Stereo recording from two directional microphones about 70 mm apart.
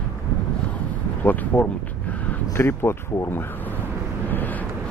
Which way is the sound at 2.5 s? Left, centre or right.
Left.